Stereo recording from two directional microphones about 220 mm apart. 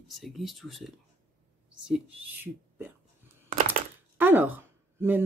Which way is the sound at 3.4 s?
35° right (ahead or behind).